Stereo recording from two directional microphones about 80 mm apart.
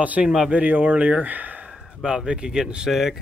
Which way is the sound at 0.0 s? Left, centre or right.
Centre.